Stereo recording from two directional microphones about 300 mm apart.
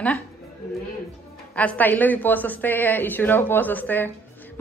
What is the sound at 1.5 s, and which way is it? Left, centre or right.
A woman's voice, centre.